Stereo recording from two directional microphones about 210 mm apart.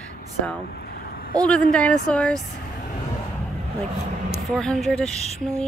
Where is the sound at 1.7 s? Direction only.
5° left (ahead or behind).